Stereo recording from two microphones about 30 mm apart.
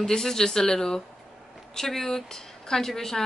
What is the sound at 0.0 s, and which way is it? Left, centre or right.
Speech, centre.